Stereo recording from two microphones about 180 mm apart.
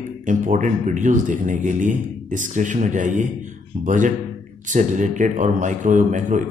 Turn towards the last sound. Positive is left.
turn(degrees=-45)  # may be behind; listen again after turning